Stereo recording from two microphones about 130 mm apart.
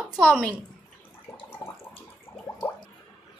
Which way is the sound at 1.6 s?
35° left (ahead or behind).